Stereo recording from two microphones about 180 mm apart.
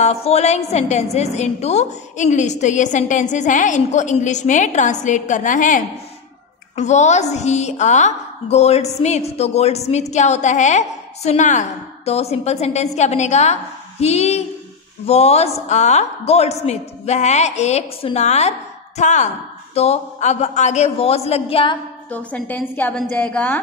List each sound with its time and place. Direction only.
0.0 s a woman's voice: 35° left (ahead or behind)
22.1 s a woman's voice: 10° left (ahead or behind)